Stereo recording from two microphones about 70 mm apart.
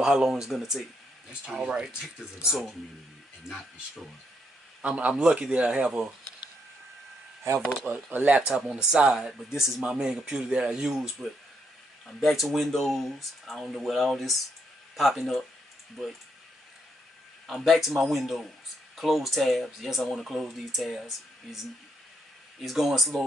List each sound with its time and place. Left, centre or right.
0.0 s speech: centre
4.8 s speech: centre
7.8 s speech: right; by 15.4 s centre
17.5 s speech: centre
22.6 s speech: centre